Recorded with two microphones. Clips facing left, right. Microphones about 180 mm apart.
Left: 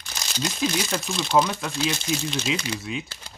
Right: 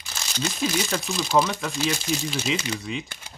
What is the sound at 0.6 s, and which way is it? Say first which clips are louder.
Speech: even; centre (ahead or behind).